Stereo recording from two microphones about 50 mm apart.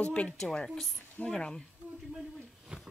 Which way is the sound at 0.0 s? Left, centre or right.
Left.